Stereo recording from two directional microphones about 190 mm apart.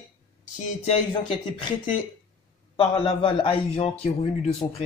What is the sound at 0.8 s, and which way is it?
Speech, 25° left (ahead or behind).